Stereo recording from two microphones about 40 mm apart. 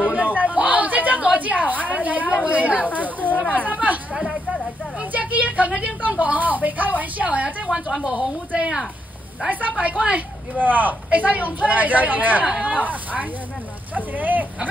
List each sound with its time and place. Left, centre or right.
0.0 s chatter: right
0.4 s a sound: right
2.0 s a woman's voice: right
2.9 s speech: left
3.7 s a woman's voice: right
4.1 s speech: centre
5.1 s a woman's voice: right
8.0 s a woman's voice: centre
9.5 s a woman's voice: right
10.6 s speech: right
12.4 s a woman's voice: right
12.7 s speech: right